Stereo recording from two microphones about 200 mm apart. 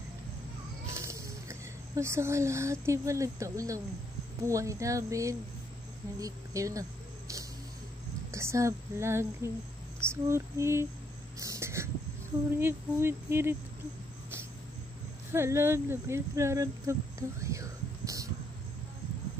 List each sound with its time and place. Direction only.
0.8 s speech: 15° right (ahead or behind)
11.3 s whispering: 15° right (ahead or behind)
12.5 s speech: 10° right (ahead or behind)
15.3 s speech: 15° right (ahead or behind)
17.4 s a sound: 15° right (ahead or behind)